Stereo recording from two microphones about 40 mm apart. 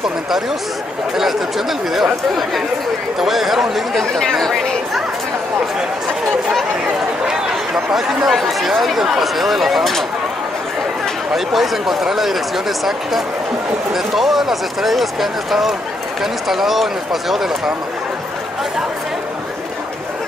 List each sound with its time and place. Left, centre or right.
1.1 s speech: centre
3.2 s speech: centre
4.1 s speech: centre
7.2 s a sound: centre
7.9 s speech: centre
11.3 s speech: centre